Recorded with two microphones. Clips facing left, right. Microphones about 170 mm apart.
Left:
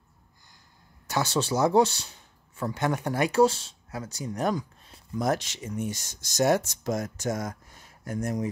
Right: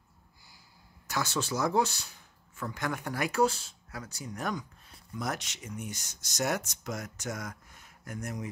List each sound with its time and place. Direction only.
1.1 s speech: 30° left (ahead or behind)